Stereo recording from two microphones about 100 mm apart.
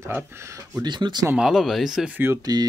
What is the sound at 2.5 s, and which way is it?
Speech, 40° right (ahead or behind).